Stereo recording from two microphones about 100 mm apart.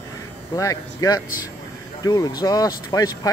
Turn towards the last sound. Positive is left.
turn(degrees=35)  # may be behind; listen again after turning